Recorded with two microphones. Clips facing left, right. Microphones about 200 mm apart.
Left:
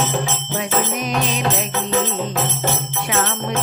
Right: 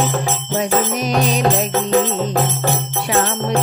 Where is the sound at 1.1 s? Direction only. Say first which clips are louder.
Right 5 dB; 40° right (ahead or behind).